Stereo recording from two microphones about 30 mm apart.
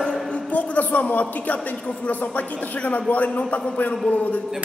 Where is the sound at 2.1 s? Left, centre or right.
Left.